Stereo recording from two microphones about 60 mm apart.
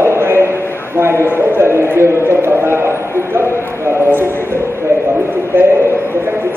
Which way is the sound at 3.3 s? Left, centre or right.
Right.